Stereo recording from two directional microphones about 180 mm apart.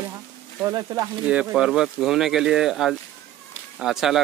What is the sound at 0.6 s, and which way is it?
Speech, 20° right (ahead or behind).